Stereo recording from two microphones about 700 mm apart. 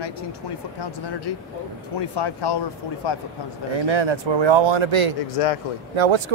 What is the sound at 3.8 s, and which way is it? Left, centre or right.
Speech, right.